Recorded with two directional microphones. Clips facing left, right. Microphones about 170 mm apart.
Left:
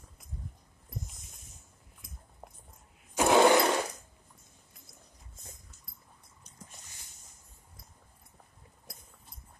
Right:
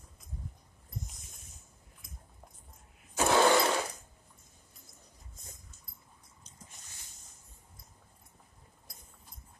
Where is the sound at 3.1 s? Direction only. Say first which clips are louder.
Left 3 dB; 15° left (ahead or behind).